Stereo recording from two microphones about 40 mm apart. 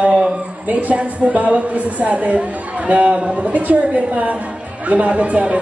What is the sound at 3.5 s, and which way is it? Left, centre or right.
Speech, right.